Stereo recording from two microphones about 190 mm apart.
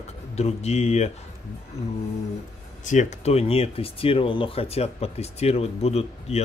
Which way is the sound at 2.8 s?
35° left (ahead or behind).